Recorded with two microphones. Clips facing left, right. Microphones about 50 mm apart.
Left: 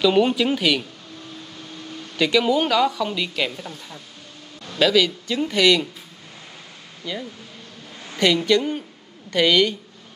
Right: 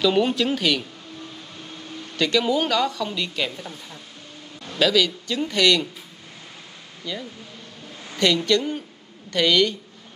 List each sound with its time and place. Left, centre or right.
0.0 s speech: centre
2.1 s speech: centre
7.1 s speech: centre